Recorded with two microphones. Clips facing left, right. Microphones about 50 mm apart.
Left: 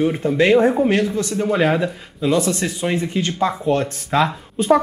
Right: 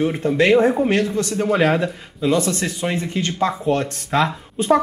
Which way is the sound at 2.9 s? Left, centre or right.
Centre.